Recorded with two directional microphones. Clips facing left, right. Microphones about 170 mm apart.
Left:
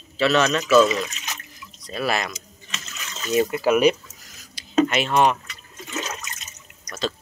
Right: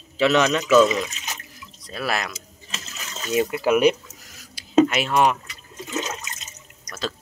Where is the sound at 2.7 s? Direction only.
35° right (ahead or behind).